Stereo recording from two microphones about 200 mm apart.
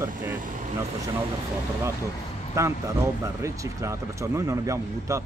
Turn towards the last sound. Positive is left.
turn(degrees=-15)  # may be behind; listen again after turning